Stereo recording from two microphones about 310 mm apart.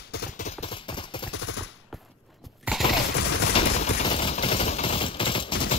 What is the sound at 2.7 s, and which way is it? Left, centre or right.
Fusillade, centre.